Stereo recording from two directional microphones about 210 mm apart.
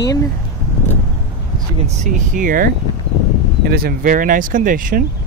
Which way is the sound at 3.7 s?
45° right (ahead or behind).